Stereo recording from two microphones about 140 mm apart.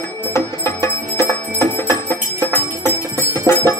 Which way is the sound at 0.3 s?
20° left (ahead or behind).